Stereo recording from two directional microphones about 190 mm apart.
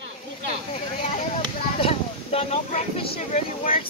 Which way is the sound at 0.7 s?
35° left (ahead or behind).